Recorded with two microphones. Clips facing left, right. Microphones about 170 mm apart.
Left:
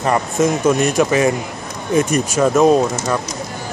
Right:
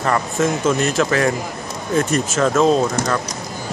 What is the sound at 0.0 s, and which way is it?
Speech, 20° left (ahead or behind).